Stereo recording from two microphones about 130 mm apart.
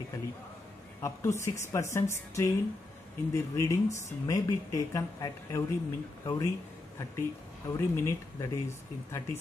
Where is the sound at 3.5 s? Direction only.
25° left (ahead or behind).